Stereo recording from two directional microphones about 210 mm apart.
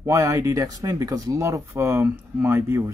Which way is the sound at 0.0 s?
15° right (ahead or behind).